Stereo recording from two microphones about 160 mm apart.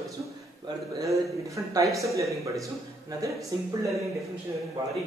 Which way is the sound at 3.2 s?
20° right (ahead or behind).